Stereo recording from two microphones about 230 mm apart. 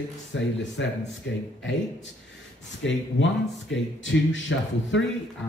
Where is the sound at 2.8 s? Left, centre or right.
Left.